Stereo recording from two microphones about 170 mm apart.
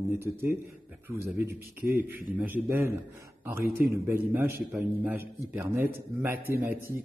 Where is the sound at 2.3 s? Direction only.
10° right (ahead or behind).